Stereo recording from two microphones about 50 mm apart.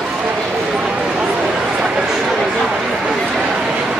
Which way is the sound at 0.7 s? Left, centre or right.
Centre.